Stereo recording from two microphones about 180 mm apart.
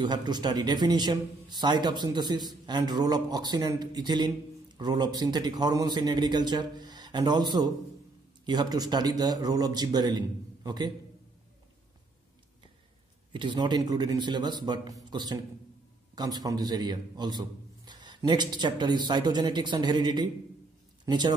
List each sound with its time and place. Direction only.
0.0 s a man's voice: 25° right (ahead or behind)
13.3 s a man's voice: 25° right (ahead or behind)
21.0 s a sound: 25° right (ahead or behind)